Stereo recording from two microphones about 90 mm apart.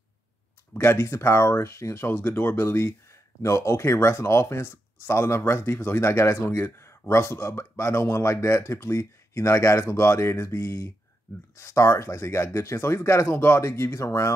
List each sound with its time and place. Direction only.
0.7 s speech: 30° left (ahead or behind)